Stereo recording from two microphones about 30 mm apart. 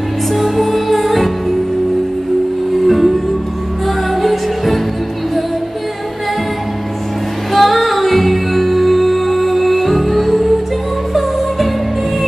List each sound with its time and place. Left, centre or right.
0.3 s music: centre
2.9 s music: centre
7.5 s music: centre